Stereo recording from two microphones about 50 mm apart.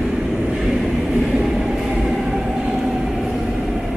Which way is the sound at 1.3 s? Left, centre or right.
Centre.